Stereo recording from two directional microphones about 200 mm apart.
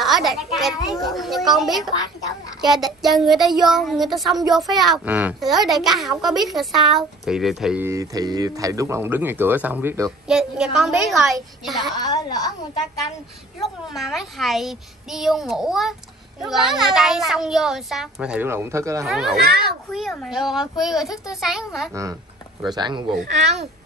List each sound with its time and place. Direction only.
0.0 s a child's voice: centre (ahead or behind)
11.9 s a woman's voice: 20° left (ahead or behind)
13.9 s speech: centre (ahead or behind)
19.0 s speech: centre (ahead or behind)
19.4 s a child's voice: 50° right (ahead or behind)
19.9 s speech: centre (ahead or behind)
22.8 s speech: 20° right (ahead or behind)
23.1 s speech: 35° right (ahead or behind)